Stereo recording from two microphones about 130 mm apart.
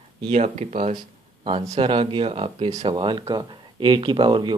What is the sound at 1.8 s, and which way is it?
Speech, 40° right (ahead or behind).